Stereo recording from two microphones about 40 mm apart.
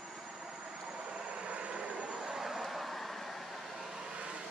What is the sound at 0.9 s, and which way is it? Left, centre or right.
Vehicle, right.